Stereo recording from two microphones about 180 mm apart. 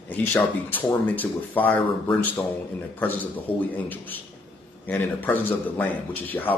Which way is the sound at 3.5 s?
30° left (ahead or behind).